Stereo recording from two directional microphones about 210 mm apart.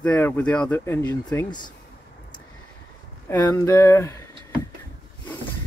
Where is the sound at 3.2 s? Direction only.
10° left (ahead or behind).